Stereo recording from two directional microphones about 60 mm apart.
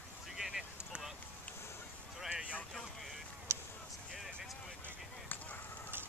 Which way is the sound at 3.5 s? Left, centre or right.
Right.